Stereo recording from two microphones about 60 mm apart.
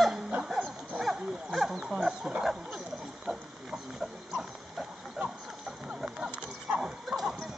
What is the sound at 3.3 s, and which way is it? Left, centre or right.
Pig, centre.